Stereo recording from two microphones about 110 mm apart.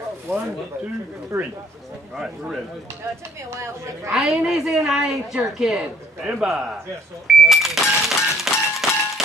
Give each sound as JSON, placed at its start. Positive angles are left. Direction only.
{"t": 1.3, "sound": "a woman's voice", "side_deg": -25}
{"t": 2.1, "sound": "a woman's voice", "side_deg": -5}
{"t": 3.4, "sound": "a woman's voice", "side_deg": -25}
{"t": 4.1, "sound": "a woman's voice", "side_deg": -5}
{"t": 7.2, "sound": "cash register", "side_deg": 0}